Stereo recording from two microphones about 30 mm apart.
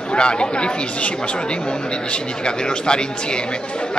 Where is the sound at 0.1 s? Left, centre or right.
Left.